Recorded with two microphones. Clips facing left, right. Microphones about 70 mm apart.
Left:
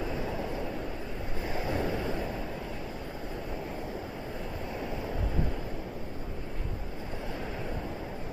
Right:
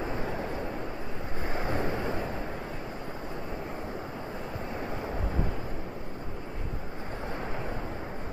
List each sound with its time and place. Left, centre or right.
0.0 s vehicle: right
1.5 s vehicle: right